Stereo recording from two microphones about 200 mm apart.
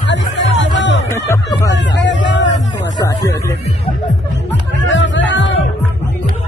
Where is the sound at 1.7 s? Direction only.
60° left (ahead or behind).